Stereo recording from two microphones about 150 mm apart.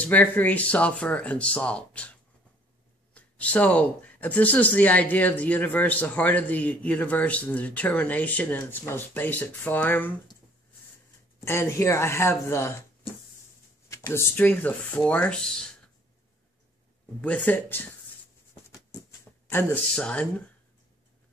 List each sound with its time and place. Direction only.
0.0 s speech: 10° left (ahead or behind)
3.2 s speech: 10° left (ahead or behind)
11.4 s speech: 15° left (ahead or behind)
13.8 s speech: 20° left (ahead or behind)
17.2 s speech: 10° left (ahead or behind)
19.4 s speech: 10° left (ahead or behind)